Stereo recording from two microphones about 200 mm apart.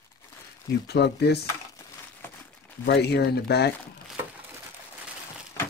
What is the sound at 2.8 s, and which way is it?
Speech, 55° left (ahead or behind).